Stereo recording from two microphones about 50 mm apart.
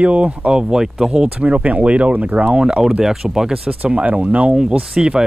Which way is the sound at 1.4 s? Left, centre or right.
Right.